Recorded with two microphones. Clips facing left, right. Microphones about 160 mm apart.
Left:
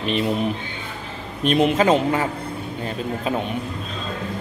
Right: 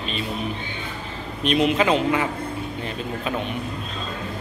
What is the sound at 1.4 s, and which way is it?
Speech, 50° left (ahead or behind).